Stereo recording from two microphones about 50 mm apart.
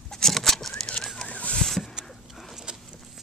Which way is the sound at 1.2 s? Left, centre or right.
Left.